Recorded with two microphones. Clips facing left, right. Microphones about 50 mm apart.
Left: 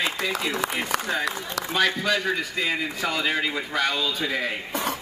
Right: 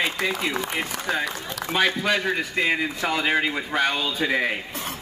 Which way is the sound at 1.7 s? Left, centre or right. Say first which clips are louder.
Right 1 dB; centre.